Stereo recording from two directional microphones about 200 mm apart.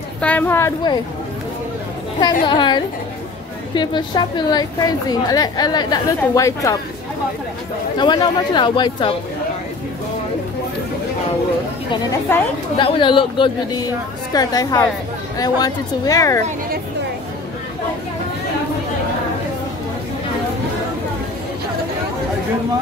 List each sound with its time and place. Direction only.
0.2 s speech: 10° left (ahead or behind)
2.4 s a woman's voice: 25° left (ahead or behind)
8.0 s a woman's voice: 20° left (ahead or behind)
12.3 s speech: 10° left (ahead or behind)
12.7 s a woman's voice: 25° left (ahead or behind)
16.3 s a woman's voice: 40° right (ahead or behind)